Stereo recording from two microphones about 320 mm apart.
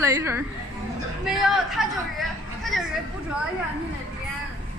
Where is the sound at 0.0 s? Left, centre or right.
Centre.